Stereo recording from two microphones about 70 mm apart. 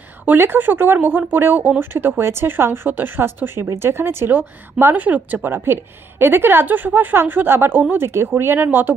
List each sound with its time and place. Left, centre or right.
0.2 s a woman's voice: right